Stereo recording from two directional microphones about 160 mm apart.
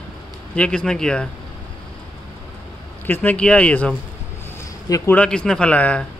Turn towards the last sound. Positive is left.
turn(degrees=10)  # may be behind; listen again after turning